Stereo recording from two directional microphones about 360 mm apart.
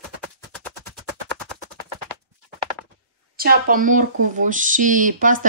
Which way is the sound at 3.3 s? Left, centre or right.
Right.